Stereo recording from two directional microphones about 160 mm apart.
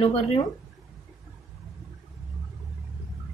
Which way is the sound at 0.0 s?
40° left (ahead or behind).